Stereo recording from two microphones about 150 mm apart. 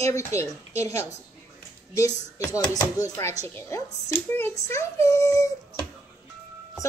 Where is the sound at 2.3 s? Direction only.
20° left (ahead or behind).